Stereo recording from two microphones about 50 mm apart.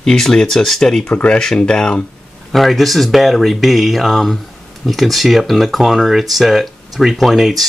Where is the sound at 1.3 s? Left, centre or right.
Centre.